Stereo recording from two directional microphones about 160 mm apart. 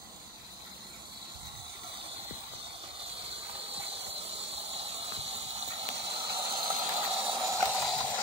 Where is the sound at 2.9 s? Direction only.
35° right (ahead or behind).